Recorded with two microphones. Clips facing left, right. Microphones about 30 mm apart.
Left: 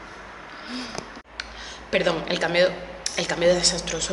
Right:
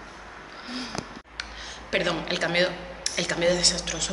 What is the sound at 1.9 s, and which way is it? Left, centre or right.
Speech, centre.